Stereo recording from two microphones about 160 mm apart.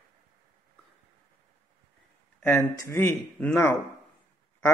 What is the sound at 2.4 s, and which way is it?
A man's voice, 15° left (ahead or behind).